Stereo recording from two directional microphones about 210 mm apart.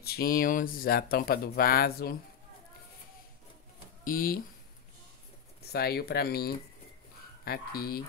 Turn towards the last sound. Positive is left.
turn(degrees=45)  # may be behind; listen again after turning